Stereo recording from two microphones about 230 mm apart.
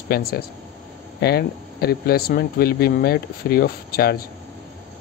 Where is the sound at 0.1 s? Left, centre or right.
Left.